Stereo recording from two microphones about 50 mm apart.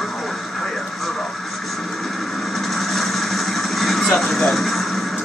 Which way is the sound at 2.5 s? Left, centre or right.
Centre.